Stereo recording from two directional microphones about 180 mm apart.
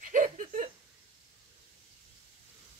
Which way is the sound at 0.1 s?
45° right (ahead or behind).